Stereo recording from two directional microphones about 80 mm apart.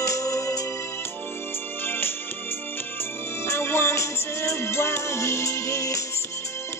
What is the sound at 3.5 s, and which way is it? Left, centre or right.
Music, left.